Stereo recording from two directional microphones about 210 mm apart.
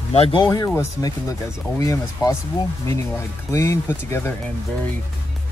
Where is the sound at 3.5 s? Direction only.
15° left (ahead or behind).